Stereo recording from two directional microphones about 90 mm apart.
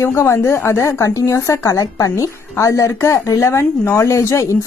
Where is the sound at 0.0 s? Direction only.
30° left (ahead or behind).